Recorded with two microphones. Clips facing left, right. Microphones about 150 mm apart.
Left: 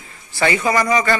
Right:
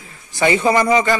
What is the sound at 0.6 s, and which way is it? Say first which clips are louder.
Speech: right 4 dB; 30° right (ahead or behind).